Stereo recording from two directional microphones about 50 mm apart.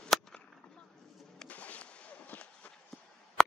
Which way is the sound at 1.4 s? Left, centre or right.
Left.